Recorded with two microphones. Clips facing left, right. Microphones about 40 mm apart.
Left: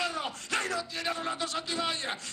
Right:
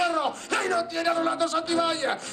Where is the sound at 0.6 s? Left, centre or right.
Right.